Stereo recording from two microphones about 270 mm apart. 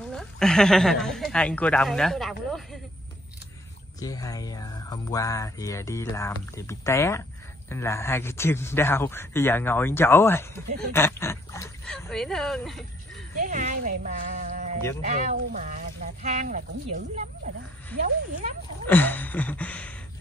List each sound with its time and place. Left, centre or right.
0.1 s speech: centre
4.0 s speech: centre
13.4 s speech: right
18.9 s speech: centre